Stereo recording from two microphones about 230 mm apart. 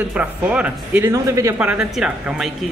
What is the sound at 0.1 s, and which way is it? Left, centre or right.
A man's voice, centre.